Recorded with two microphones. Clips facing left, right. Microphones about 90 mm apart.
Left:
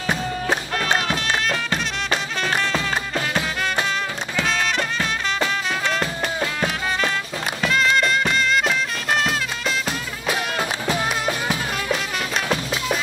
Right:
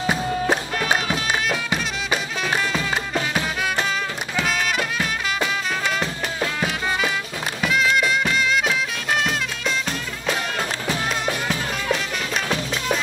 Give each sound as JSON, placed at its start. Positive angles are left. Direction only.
{"t": 0.0, "sound": "music", "side_deg": -10}